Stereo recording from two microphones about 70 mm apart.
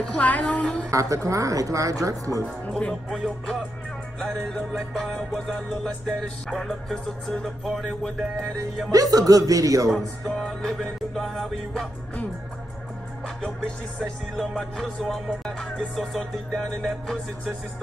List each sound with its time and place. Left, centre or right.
0.0 s music: centre
0.8 s speech: right
2.4 s speech: centre
2.9 s music: centre
8.9 s speech: right
9.8 s music: centre
14.0 s music: centre